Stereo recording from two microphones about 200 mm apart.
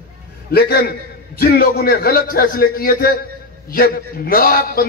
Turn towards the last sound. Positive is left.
turn(degrees=45)  # may be behind; listen again after turning